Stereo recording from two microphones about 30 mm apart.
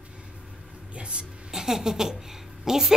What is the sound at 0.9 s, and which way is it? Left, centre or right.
Speech, right.